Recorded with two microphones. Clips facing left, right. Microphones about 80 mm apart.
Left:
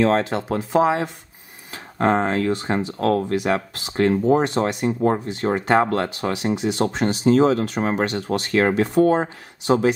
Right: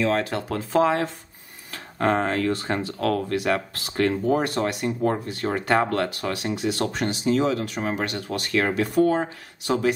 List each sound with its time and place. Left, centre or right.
0.2 s speech: left
3.0 s speech: left
7.2 s speech: left